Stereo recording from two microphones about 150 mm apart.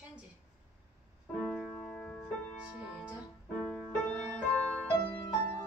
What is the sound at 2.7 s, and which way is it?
Music, 5° right (ahead or behind).